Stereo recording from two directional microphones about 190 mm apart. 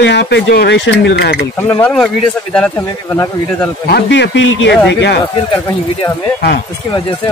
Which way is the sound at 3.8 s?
65° left (ahead or behind).